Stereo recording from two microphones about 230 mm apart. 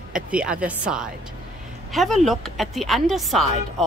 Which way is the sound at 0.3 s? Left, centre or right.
Centre.